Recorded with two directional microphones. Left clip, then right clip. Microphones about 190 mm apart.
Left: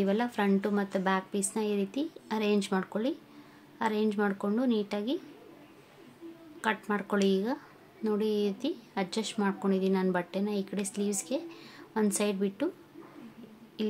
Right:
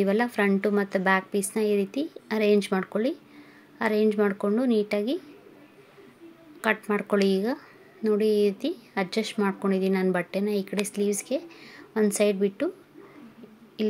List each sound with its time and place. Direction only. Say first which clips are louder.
0.0 s a woman's voice: right 5 dB; 15° right (ahead or behind)
6.6 s a woman's voice: right 5 dB; 15° right (ahead or behind)
13.8 s a sound: right 6 dB; 15° right (ahead or behind)